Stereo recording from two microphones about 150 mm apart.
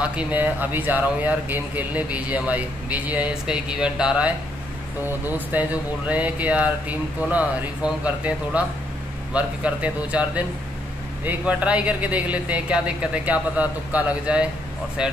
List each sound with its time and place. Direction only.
0.0 s speech: 5° right (ahead or behind)
5.5 s speech: 10° right (ahead or behind)